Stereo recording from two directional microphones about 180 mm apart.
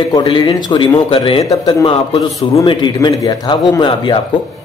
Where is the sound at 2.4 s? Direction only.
30° left (ahead or behind).